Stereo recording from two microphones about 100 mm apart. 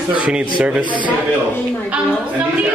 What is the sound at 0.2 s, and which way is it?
Speech, 10° right (ahead or behind).